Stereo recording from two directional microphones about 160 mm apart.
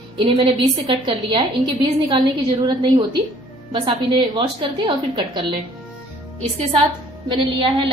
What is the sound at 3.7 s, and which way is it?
A woman's voice, 35° right (ahead or behind).